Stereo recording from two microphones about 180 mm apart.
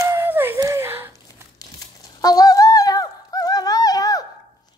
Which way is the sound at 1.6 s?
20° left (ahead or behind).